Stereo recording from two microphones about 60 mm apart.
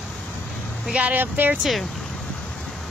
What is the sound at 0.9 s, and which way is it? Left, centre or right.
Speech, right.